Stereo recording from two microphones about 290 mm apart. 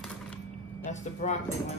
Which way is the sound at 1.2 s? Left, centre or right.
Left.